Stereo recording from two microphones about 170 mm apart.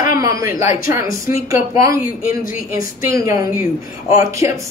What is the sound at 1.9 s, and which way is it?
Speech, 55° left (ahead or behind).